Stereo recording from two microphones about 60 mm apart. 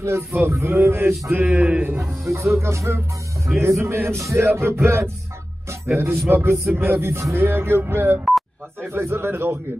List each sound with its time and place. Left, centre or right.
0.0 s speech: right
0.7 s music: right
1.5 s a man's voice: right
2.0 s speech: right
3.5 s speech: centre
3.8 s speech: right
5.9 s music: right
6.7 s speech: right